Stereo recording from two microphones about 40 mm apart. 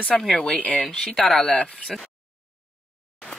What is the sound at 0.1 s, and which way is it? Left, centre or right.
A woman's voice, centre.